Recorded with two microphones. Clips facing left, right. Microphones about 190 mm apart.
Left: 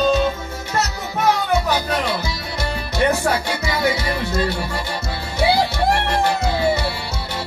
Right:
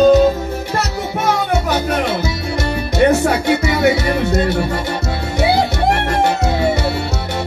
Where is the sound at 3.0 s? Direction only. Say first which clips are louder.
Right 5 dB; 25° right (ahead or behind).